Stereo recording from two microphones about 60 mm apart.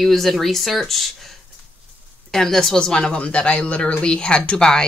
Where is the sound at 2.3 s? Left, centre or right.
Centre.